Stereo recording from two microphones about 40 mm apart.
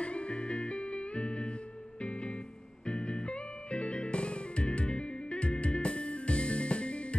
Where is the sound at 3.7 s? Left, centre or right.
Left.